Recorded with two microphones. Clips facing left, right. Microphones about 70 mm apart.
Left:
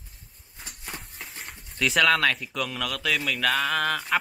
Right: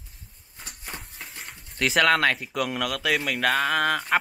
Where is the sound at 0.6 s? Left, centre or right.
Centre.